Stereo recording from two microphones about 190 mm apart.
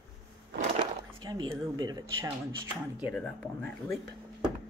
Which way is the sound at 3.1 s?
5° left (ahead or behind).